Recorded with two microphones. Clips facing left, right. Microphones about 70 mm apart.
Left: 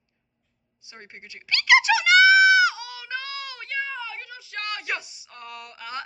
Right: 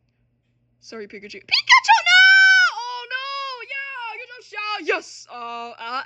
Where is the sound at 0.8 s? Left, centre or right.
Left.